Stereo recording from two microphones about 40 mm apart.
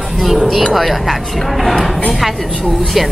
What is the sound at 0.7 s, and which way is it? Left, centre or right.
Speech, centre.